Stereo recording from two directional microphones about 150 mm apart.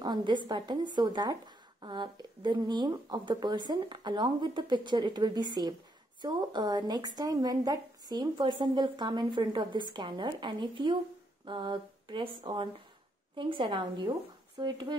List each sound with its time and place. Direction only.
0.0 s a woman's voice: 30° right (ahead or behind)
9.9 s a sound: 30° right (ahead or behind)
14.6 s a woman's voice: 30° right (ahead or behind)